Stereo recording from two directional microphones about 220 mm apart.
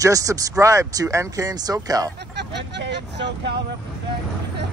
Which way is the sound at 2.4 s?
50° right (ahead or behind).